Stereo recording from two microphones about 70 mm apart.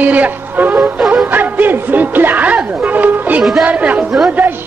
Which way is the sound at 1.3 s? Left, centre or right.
Right.